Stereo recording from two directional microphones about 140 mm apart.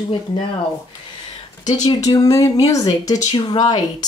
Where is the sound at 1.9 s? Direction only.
25° left (ahead or behind).